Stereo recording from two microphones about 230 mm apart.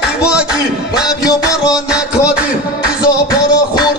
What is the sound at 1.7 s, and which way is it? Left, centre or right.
Music, centre.